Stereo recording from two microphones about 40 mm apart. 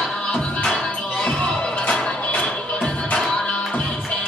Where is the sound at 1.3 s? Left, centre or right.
Left.